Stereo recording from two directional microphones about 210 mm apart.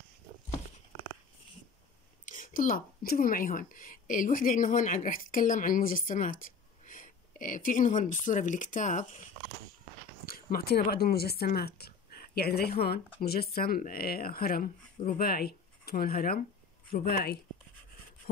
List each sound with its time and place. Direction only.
2.2 s speech: 40° left (ahead or behind)
10.2 s a sound: 45° left (ahead or behind)
10.9 s speech: 50° left (ahead or behind)